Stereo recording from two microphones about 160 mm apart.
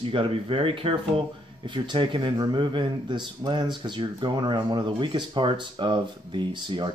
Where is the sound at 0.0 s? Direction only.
30° right (ahead or behind).